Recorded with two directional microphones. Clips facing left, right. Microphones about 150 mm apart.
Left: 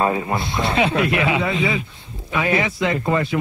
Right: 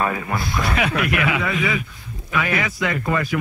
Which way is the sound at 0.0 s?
25° left (ahead or behind).